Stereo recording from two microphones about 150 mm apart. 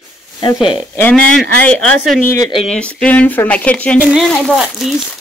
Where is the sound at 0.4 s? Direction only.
30° left (ahead or behind).